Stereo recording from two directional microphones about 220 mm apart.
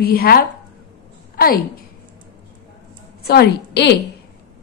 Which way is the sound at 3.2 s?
50° left (ahead or behind).